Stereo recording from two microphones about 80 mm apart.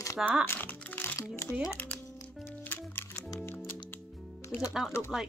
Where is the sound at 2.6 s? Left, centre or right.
Left.